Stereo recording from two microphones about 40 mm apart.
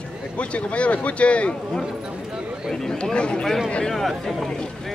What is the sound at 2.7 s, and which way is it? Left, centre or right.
Speech, centre.